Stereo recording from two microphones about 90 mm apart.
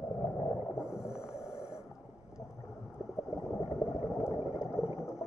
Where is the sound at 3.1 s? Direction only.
5° right (ahead or behind).